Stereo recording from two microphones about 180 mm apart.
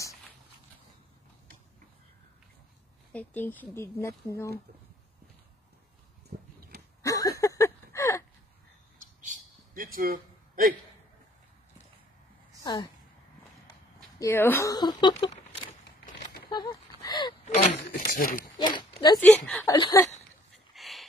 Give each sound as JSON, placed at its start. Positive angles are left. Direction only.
{"t": 3.1, "sound": "speech", "side_deg": 10}
{"t": 6.3, "sound": "tick-tock", "side_deg": -50}
{"t": 7.0, "sound": "a sound", "side_deg": 20}
{"t": 9.2, "sound": "a sound", "side_deg": -50}
{"t": 12.7, "sound": "speech", "side_deg": 25}
{"t": 14.2, "sound": "speech", "side_deg": 10}
{"t": 16.4, "sound": "a sound", "side_deg": 25}
{"t": 17.0, "sound": "gasp", "side_deg": 25}
{"t": 17.5, "sound": "a sound", "side_deg": 50}
{"t": 18.6, "sound": "speech", "side_deg": 25}
{"t": 19.1, "sound": "speech", "side_deg": 5}
{"t": 19.6, "sound": "speech", "side_deg": 20}
{"t": 20.7, "sound": "dog", "side_deg": 0}